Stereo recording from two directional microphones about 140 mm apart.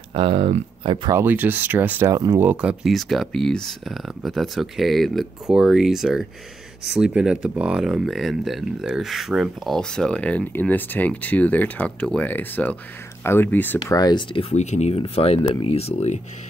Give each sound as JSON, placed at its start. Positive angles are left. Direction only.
{"t": 0.1, "sound": "speech", "side_deg": -40}
{"t": 1.1, "sound": "speech", "side_deg": -15}
{"t": 13.8, "sound": "speech", "side_deg": 30}
{"t": 14.5, "sound": "speech", "side_deg": 55}